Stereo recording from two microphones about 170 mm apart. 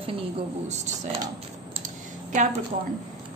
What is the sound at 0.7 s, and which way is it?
Speech, 40° right (ahead or behind).